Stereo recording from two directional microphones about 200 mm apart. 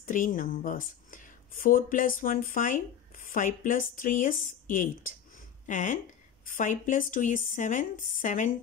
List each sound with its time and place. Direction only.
0.0 s a woman's voice: 40° left (ahead or behind)